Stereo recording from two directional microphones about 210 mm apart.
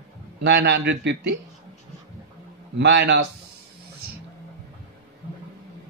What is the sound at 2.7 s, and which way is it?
Speech, 55° right (ahead or behind).